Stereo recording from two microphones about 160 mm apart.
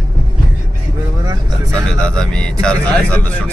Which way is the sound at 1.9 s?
5° left (ahead or behind).